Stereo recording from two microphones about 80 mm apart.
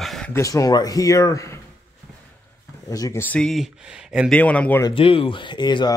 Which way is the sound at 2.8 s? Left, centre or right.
Left.